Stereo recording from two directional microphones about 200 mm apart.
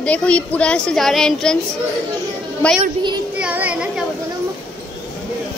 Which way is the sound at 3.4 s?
5° right (ahead or behind).